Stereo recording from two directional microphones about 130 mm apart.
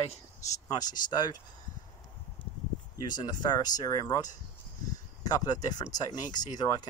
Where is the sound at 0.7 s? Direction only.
30° left (ahead or behind).